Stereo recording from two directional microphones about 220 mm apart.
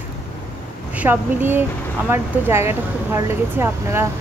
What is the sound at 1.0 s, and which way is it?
Speech, 10° right (ahead or behind).